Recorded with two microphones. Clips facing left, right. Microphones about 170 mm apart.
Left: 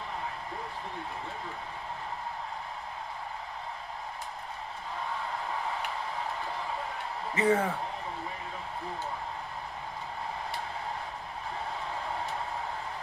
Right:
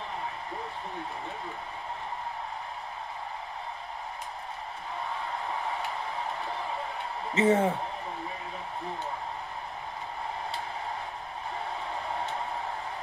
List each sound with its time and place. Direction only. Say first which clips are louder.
7.3 s speech: right 3 dB; 25° right (ahead or behind)